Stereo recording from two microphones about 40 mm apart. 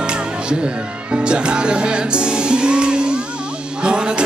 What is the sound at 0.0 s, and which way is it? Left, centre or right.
Music, right.